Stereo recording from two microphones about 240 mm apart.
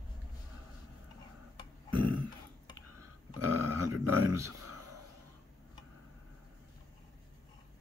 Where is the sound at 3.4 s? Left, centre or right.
Right.